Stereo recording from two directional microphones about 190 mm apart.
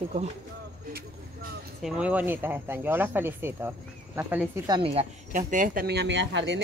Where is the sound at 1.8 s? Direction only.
5° right (ahead or behind).